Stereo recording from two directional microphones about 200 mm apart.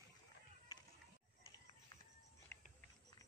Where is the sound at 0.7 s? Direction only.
20° left (ahead or behind).